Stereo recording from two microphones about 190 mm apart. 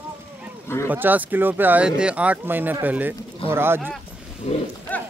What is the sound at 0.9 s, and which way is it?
Speech, 10° right (ahead or behind).